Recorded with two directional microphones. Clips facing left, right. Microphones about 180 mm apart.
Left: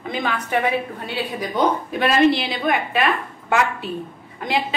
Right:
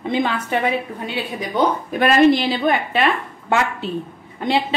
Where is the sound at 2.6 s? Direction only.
30° right (ahead or behind).